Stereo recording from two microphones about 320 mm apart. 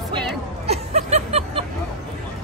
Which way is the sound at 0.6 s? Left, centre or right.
Centre.